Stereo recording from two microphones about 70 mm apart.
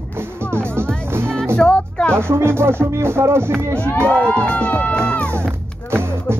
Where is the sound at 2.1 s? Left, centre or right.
Right.